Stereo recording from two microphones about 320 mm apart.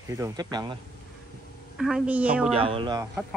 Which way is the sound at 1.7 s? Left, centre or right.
Centre.